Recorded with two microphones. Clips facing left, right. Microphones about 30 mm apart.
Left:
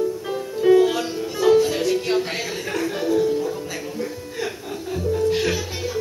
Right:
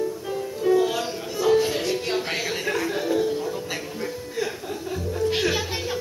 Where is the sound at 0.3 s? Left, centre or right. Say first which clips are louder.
Left 5 dB; left.